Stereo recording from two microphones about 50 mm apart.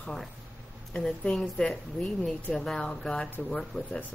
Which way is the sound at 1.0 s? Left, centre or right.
Centre.